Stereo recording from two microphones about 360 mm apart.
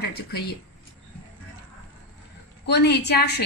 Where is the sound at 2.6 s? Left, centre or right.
Left.